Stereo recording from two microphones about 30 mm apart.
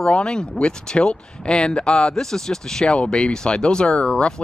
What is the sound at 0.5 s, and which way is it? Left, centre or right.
Speech, left.